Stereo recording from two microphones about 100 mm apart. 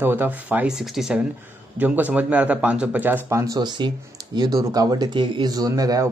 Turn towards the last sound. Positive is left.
turn(degrees=-40)  # may be behind; listen again after turning